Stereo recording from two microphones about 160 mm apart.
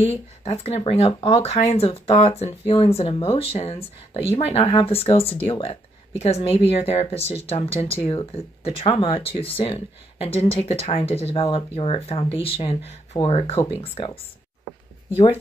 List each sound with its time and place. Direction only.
0.0 s speech: 40° left (ahead or behind)